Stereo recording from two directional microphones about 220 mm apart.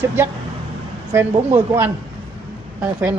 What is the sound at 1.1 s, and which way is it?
Speech, 10° right (ahead or behind).